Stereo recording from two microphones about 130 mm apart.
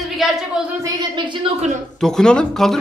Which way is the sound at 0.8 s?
35° right (ahead or behind).